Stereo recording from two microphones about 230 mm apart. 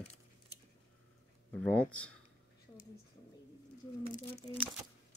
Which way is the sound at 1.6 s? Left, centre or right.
Centre.